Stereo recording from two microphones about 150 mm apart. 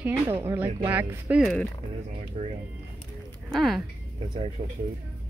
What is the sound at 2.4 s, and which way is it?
Speech, 45° right (ahead or behind).